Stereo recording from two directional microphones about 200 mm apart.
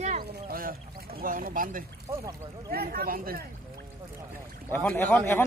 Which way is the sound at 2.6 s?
50° right (ahead or behind).